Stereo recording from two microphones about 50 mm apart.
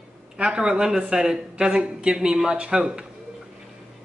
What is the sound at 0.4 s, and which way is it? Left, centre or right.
Speech, centre.